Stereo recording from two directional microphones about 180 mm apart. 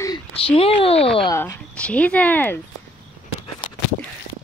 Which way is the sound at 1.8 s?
5° left (ahead or behind).